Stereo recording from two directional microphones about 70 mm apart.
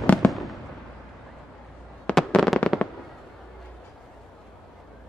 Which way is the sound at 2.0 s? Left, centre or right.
Centre.